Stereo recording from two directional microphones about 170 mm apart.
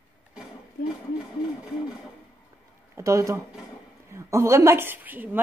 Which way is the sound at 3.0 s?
20° right (ahead or behind).